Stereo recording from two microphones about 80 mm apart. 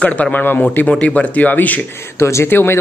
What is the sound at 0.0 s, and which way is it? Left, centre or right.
Speech, centre.